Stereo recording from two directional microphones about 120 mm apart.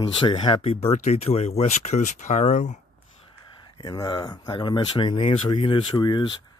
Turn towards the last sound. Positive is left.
turn(degrees=40)  # may be behind; listen again after turning